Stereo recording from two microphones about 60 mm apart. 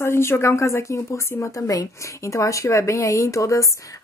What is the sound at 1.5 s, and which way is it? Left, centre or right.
A woman's voice, left.